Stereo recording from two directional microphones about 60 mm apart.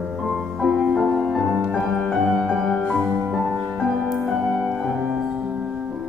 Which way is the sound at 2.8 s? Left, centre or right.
Centre.